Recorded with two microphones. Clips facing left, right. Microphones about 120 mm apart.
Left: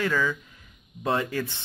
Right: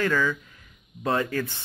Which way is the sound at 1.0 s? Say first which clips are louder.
Right 1 dB; 20° left (ahead or behind).